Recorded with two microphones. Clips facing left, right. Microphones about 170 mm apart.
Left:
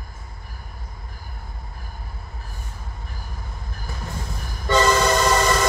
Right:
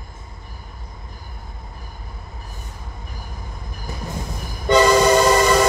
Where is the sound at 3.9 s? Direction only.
20° right (ahead or behind).